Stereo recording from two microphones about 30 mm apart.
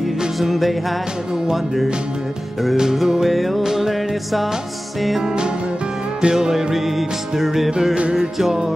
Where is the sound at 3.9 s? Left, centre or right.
Centre.